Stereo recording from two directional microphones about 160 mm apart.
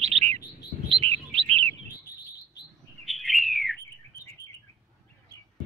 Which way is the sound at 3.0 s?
Centre (ahead or behind).